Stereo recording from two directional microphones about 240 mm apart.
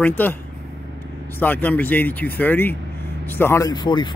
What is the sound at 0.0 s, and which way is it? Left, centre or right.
Speech, centre.